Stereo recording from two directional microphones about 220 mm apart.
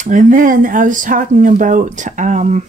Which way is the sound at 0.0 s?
35° right (ahead or behind).